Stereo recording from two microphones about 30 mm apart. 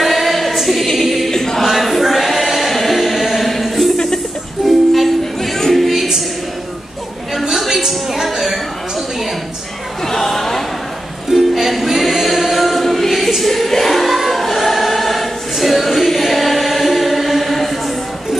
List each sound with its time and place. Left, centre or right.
0.0 s choir: centre
1.3 s choir: centre
1.6 s choir: centre
4.6 s music: centre
7.4 s a sound: centre
10.0 s chatter: centre
11.2 s music: centre
13.4 s choir: centre
16.1 s chant: centre